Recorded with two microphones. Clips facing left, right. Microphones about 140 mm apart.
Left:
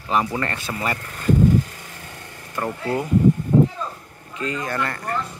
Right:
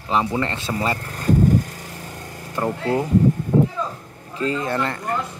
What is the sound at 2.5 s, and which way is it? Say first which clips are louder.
Speech: right 3 dB; 20° right (ahead or behind).